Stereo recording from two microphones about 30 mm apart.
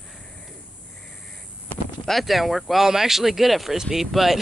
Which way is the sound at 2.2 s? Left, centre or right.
Centre.